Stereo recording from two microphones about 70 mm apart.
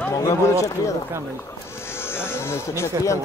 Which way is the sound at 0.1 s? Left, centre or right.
Left.